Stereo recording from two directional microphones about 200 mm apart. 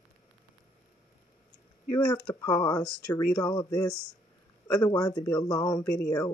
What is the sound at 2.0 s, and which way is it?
Speech, 5° left (ahead or behind).